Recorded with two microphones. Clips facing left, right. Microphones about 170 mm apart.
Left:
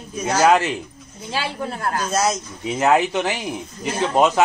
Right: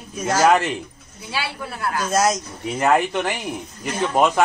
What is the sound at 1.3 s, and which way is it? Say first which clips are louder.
Speech: left 3 dB; 45° left (ahead or behind).